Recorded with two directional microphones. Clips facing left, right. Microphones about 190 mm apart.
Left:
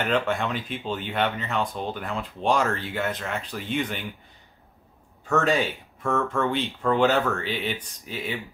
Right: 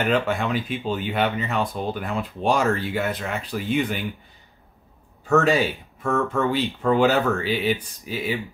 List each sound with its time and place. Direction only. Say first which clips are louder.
0.1 s speech: right 3 dB; 5° right (ahead or behind)
5.3 s speech: right 4 dB; 5° right (ahead or behind)